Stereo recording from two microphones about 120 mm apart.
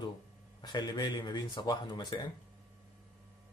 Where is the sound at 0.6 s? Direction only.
35° left (ahead or behind).